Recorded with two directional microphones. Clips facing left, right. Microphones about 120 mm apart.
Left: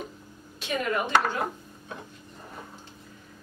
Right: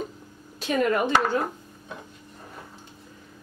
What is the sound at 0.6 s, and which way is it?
Speech, 40° right (ahead or behind).